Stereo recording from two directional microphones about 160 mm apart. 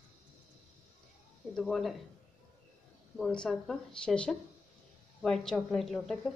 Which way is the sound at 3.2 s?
5° left (ahead or behind).